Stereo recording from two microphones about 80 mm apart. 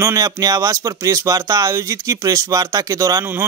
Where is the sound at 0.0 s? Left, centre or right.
Right.